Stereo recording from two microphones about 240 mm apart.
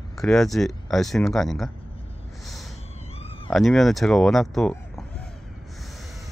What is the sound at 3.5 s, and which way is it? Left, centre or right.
Speech, centre.